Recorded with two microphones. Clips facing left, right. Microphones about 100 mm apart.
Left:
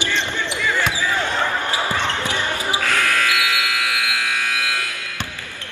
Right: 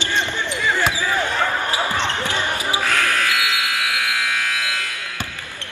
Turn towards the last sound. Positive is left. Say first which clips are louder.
# left 1 dB
turn(degrees=-20)  # may be behind; listen again after turning